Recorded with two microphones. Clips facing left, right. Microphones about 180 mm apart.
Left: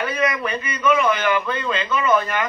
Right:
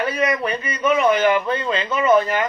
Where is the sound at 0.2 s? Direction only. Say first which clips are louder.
Right 1 dB; 35° right (ahead or behind).